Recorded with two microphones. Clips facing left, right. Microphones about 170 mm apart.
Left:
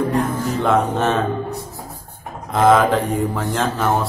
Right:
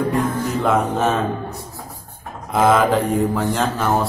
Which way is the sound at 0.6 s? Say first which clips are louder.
Left 1 dB; centre (ahead or behind).